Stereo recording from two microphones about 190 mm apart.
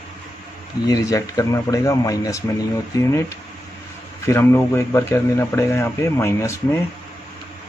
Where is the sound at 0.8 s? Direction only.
20° left (ahead or behind).